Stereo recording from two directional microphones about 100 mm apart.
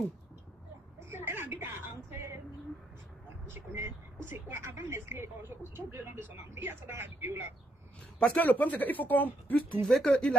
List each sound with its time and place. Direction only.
1.1 s music: 20° right (ahead or behind)
3.4 s speech: 25° right (ahead or behind)
8.2 s speech: 15° left (ahead or behind)
9.8 s speech: centre (ahead or behind)